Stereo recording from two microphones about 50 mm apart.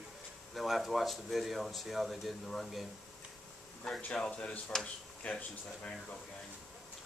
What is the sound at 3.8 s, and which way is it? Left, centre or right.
Speech, centre.